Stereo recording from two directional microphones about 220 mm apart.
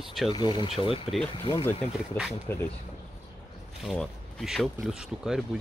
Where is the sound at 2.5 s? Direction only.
10° left (ahead or behind).